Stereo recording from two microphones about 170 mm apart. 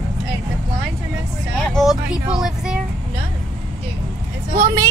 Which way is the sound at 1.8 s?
5° right (ahead or behind).